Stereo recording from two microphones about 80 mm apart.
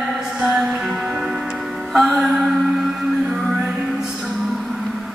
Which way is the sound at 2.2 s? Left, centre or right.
Centre.